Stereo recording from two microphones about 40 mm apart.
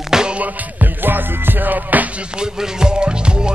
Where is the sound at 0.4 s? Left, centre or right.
Right.